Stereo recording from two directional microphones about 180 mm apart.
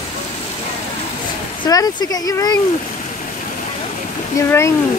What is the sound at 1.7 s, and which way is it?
Speech, 20° left (ahead or behind).